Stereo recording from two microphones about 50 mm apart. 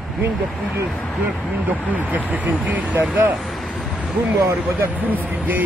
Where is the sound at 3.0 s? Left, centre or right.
Right.